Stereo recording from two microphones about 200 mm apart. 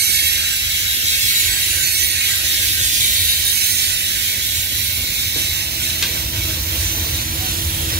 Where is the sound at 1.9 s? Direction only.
55° right (ahead or behind).